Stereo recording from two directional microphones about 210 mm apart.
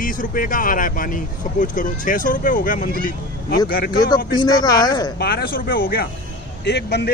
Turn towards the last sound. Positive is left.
turn(degrees=50)  # may be behind; listen again after turning